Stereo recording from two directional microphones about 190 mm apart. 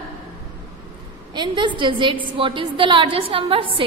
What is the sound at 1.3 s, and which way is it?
A woman's voice, 25° right (ahead or behind).